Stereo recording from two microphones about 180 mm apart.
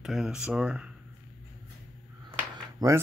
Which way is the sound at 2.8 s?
20° right (ahead or behind).